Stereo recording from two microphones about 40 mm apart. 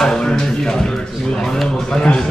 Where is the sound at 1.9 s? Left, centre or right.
Left.